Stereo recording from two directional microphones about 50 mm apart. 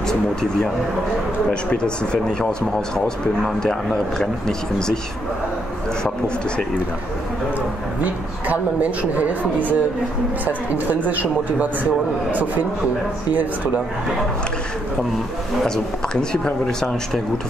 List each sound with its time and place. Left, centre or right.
1.5 s speech: centre
3.6 s speech: centre
6.0 s speech: centre
9.1 s speech: right
15.6 s speech: centre